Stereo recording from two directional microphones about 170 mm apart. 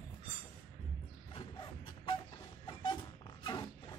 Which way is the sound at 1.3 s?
30° left (ahead or behind).